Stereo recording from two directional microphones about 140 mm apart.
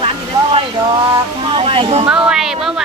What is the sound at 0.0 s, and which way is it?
Speech, 35° right (ahead or behind).